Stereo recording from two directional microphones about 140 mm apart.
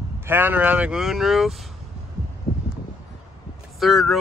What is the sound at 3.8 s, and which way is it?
Speech, centre (ahead or behind).